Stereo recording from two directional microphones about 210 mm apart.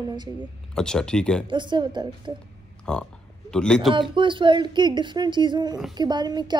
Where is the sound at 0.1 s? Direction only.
20° right (ahead or behind).